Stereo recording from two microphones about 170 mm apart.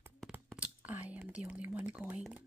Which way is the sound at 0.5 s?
10° right (ahead or behind).